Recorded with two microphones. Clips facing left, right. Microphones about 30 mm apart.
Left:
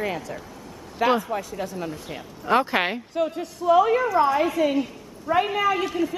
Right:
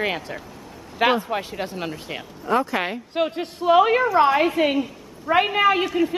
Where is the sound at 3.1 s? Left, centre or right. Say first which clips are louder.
Right 2 dB; right.